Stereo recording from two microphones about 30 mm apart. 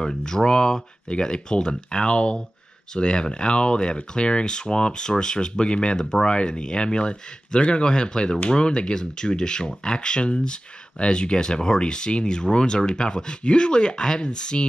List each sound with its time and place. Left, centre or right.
0.3 s speech: left